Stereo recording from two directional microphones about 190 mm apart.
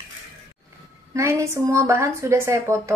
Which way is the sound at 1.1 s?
15° right (ahead or behind).